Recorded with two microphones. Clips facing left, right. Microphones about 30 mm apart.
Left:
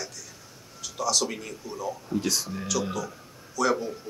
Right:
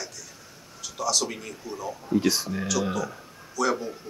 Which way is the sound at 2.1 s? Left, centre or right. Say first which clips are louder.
Right 6 dB; centre.